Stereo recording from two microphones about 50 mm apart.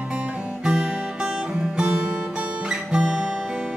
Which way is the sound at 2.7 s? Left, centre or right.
Centre.